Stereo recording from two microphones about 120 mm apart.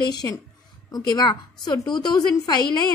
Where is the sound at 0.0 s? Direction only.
35° left (ahead or behind).